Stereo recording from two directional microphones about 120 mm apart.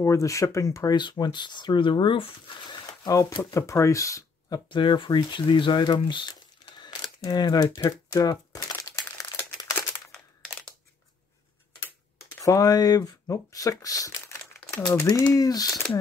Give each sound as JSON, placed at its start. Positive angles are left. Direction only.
{"t": 0.0, "sound": "speech", "side_deg": 25}
{"t": 0.9, "sound": "speech", "side_deg": 40}
{"t": 3.1, "sound": "speech", "side_deg": 30}
{"t": 4.6, "sound": "speech", "side_deg": 40}
{"t": 6.8, "sound": "camera", "side_deg": 35}
{"t": 7.8, "sound": "crumpling", "side_deg": 25}
{"t": 12.4, "sound": "speech", "side_deg": 30}